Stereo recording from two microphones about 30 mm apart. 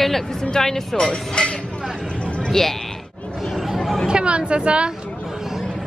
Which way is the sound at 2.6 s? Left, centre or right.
Centre.